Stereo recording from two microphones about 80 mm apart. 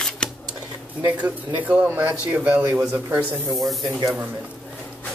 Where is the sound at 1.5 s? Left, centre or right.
Centre.